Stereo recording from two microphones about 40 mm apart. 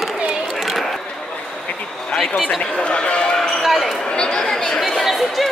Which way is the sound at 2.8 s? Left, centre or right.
Left.